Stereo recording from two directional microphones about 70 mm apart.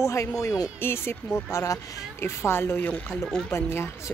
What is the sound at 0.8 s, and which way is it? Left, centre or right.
Speech, left.